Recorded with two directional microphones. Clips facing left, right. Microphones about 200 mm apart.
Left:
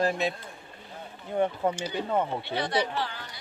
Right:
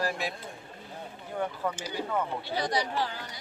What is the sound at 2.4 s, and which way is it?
Speech, 40° right (ahead or behind).